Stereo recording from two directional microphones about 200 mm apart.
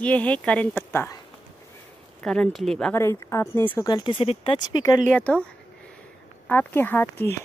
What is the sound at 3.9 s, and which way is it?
Speech, 20° left (ahead or behind).